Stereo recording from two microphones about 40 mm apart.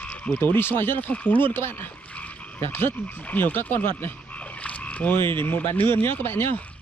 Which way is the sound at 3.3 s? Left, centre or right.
Left.